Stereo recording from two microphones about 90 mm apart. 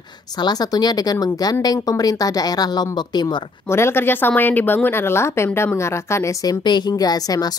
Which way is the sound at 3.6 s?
30° left (ahead or behind).